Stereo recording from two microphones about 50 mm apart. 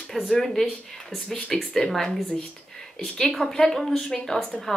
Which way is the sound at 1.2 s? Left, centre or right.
Centre.